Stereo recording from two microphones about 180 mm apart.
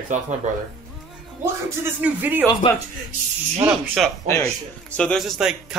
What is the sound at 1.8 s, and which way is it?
Speech, 10° right (ahead or behind).